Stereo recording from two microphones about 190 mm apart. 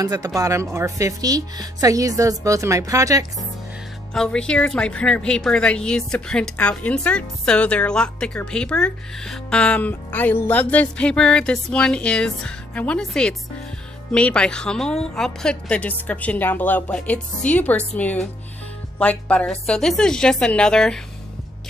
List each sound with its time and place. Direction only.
0.0 s a woman's voice: 20° right (ahead or behind)
4.1 s a woman's voice: 5° left (ahead or behind)